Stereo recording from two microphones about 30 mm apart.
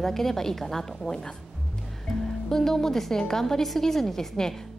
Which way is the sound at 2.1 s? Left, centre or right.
Centre.